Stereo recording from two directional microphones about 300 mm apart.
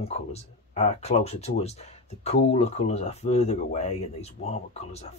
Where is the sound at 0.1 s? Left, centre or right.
Left.